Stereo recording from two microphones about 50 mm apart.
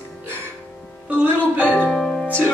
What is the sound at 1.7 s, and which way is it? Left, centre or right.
Music, left.